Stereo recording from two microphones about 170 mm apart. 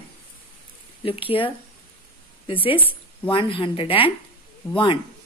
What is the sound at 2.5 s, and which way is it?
A woman's voice, 30° left (ahead or behind).